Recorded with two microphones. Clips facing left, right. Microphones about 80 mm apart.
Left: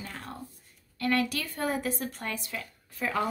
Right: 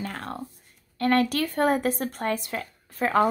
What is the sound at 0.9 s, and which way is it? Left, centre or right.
Speech, right.